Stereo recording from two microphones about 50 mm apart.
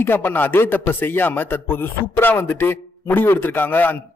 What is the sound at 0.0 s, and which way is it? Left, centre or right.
Speech, left.